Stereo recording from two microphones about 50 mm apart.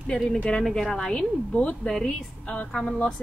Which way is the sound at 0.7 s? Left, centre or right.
Centre.